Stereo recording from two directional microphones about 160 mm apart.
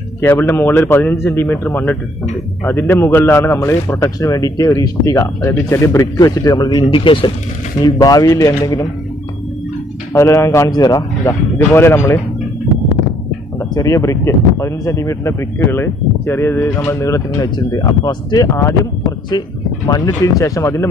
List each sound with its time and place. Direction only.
0.2 s speech: 15° left (ahead or behind)
10.1 s speech: 20° left (ahead or behind)
13.6 s speech: 20° left (ahead or behind)
19.9 s speech: 20° left (ahead or behind)